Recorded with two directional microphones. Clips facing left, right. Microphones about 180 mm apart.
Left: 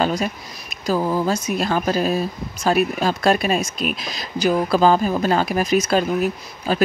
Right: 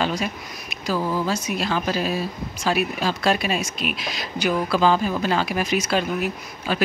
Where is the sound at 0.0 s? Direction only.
40° left (ahead or behind).